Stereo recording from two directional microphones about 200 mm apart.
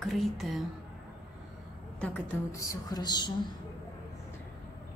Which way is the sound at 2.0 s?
10° left (ahead or behind).